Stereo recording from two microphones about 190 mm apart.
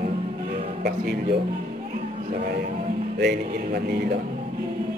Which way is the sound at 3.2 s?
55° right (ahead or behind).